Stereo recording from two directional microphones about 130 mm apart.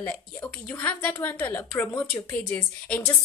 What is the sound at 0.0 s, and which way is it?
A woman's voice, 15° left (ahead or behind).